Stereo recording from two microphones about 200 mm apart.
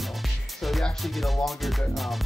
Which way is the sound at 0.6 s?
Centre (ahead or behind).